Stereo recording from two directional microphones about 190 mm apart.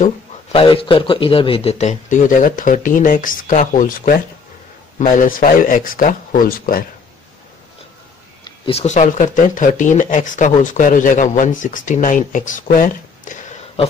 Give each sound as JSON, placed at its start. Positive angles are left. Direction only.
{"t": 0.0, "sound": "speech", "side_deg": 30}
{"t": 8.5, "sound": "speech", "side_deg": 30}